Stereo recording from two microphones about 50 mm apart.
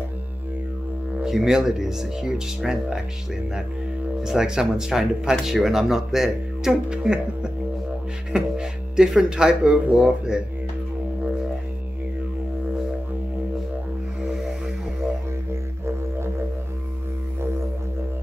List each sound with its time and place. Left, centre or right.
1.2 s speech: centre
4.2 s speech: centre
6.7 s speech: centre